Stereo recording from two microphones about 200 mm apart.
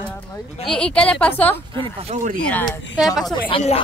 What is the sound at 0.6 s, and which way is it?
Speech, 5° left (ahead or behind).